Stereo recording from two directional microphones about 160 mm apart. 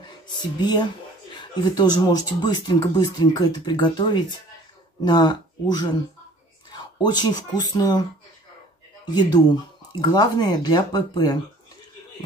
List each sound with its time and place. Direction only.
0.0 s speech: 25° left (ahead or behind)
9.0 s speech: 25° left (ahead or behind)